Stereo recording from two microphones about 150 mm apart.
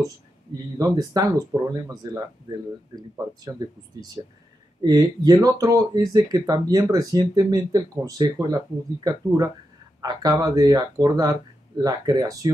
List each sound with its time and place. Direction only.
0.7 s speech: 25° right (ahead or behind)